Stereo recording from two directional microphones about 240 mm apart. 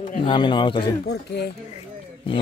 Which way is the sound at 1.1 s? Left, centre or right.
Left.